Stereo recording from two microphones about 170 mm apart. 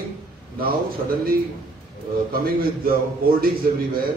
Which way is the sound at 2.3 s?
60° right (ahead or behind).